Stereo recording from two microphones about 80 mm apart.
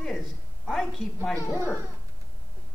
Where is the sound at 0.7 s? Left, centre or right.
Centre.